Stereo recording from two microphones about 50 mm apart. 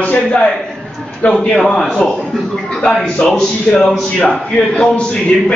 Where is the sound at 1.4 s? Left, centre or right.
Centre.